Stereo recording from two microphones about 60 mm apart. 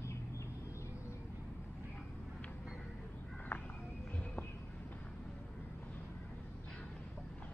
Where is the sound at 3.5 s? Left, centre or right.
Left.